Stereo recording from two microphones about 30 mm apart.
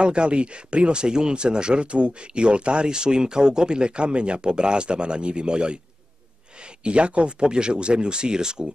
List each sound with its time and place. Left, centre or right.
0.0 s speech: right
2.9 s speech: right
6.8 s speech: right